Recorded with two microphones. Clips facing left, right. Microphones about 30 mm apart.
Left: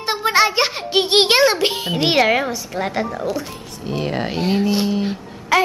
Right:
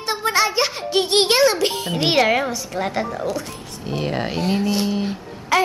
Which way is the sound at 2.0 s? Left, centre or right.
Centre.